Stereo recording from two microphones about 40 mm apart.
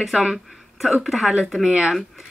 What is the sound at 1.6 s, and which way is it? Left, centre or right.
Speech, centre.